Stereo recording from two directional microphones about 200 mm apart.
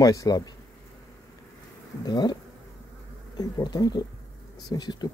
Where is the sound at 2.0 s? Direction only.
20° left (ahead or behind).